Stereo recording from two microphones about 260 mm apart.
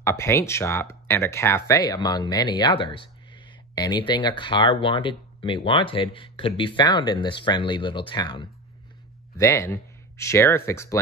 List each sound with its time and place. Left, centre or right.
0.0 s speech: centre